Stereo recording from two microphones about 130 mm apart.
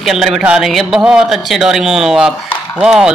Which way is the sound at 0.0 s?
Centre (ahead or behind).